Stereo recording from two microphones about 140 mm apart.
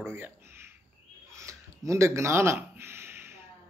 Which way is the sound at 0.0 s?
15° right (ahead or behind).